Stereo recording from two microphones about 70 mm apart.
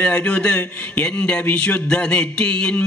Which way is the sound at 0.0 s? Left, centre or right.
Centre.